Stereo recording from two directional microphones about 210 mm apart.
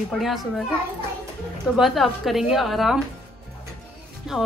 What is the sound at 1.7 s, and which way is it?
Speech, centre (ahead or behind).